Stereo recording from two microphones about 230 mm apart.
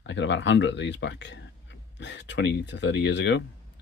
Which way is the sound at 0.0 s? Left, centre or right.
Left.